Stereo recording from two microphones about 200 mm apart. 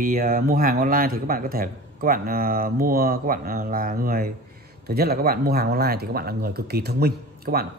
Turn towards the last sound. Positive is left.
turn(degrees=-50)  # may be behind; listen again after turning